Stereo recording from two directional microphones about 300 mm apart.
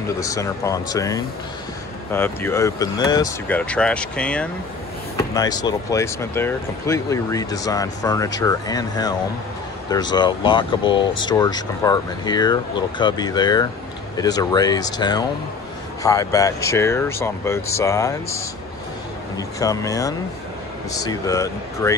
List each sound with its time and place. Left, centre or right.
0.2 s speech: centre